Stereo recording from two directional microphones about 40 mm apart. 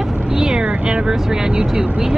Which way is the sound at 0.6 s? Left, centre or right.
Right.